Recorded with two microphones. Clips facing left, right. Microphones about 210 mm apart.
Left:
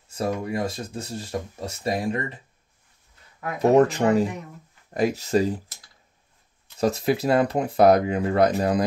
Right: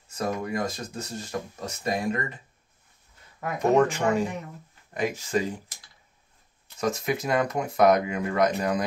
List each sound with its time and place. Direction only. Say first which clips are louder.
0.1 s speech: left 2 dB; 30° left (ahead or behind)
3.7 s speech: left 4 dB; 35° left (ahead or behind)
6.8 s speech: left 5 dB; 35° left (ahead or behind)